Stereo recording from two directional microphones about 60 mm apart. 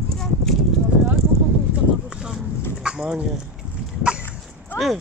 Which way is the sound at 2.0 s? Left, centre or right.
Centre.